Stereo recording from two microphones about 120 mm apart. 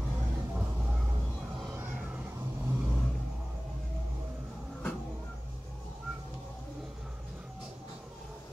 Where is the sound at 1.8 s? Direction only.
15° right (ahead or behind).